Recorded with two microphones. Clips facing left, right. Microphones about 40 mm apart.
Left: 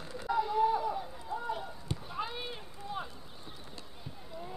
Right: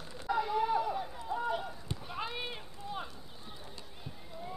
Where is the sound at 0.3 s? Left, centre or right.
Centre.